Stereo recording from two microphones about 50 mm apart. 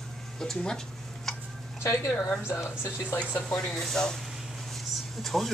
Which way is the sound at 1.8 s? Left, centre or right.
Left.